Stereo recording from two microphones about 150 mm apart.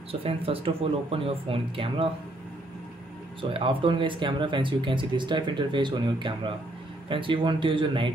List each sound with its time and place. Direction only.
0.1 s speech: 40° right (ahead or behind)
3.3 s speech: 35° right (ahead or behind)